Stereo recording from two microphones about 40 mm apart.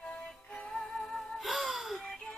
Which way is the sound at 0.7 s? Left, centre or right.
Centre.